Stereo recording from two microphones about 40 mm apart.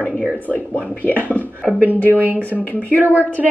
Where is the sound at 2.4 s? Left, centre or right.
Left.